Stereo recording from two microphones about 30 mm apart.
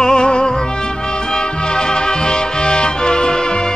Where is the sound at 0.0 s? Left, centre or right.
Left.